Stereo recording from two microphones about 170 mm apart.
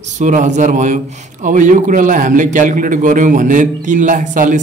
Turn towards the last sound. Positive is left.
turn(degrees=-50)  # may be behind; listen again after turning